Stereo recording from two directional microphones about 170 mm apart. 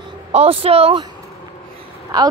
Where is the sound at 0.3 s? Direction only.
35° right (ahead or behind).